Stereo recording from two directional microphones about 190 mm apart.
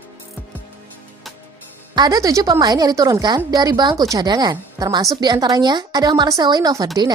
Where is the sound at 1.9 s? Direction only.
20° right (ahead or behind).